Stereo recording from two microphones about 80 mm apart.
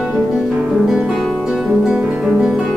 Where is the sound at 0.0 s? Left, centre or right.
Centre.